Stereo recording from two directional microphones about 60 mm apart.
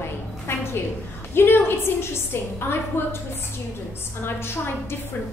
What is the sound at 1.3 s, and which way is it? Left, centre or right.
A woman's voice, left.